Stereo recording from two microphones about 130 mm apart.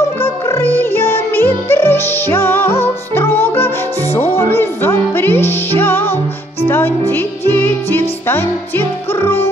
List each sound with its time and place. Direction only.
0.2 s music: 20° left (ahead or behind)